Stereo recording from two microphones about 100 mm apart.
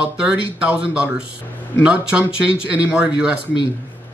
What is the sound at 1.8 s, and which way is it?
Speech, 10° right (ahead or behind).